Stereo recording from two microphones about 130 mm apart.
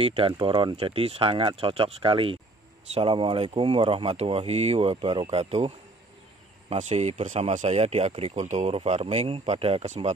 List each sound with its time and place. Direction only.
0.0 s speech: 45° right (ahead or behind)
6.7 s speech: 60° right (ahead or behind)